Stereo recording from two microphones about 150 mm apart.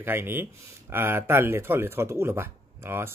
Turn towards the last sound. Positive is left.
turn(degrees=-15)  # may be behind; listen again after turning